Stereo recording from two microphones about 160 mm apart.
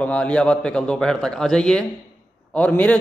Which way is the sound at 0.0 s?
5° left (ahead or behind).